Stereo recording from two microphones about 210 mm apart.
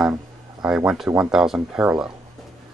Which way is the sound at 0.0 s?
5° right (ahead or behind).